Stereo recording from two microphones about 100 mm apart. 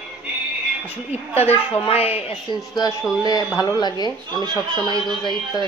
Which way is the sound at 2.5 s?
40° right (ahead or behind).